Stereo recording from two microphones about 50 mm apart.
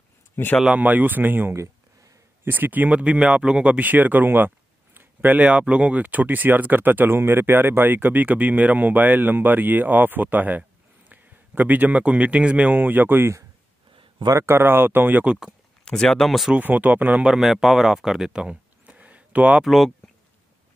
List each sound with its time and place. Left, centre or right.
0.4 s speech: left
0.7 s speech: right
4.9 s a sound: right
5.4 s speech: right
12.7 s speech: right
14.5 s speech: right
15.8 s speech: centre
16.5 s speech: right
17.3 s speech: centre
18.3 s speech: centre
18.9 s a sound: right
19.6 s speech: centre